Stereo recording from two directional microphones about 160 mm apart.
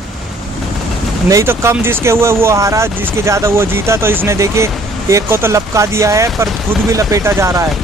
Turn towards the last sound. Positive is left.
turn(degrees=-20)  # may be behind; listen again after turning